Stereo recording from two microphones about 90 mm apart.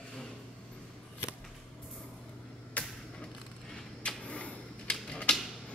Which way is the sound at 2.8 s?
15° left (ahead or behind).